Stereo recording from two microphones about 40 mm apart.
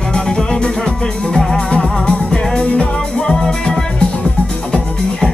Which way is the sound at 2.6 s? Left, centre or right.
Left.